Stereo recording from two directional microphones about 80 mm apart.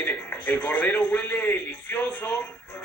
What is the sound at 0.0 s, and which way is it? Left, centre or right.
A man's voice, left.